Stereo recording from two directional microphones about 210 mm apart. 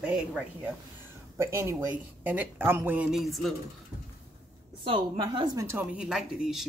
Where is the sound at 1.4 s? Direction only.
15° right (ahead or behind).